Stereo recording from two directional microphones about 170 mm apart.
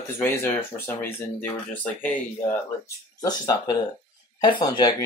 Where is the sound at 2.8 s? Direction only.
20° left (ahead or behind).